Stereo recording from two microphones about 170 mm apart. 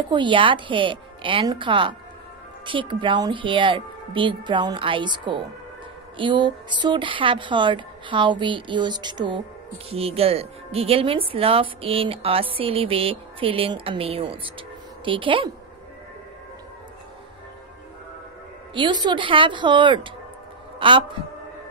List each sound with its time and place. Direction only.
0.1 s speech: 30° right (ahead or behind)
18.8 s a man's voice: 25° right (ahead or behind)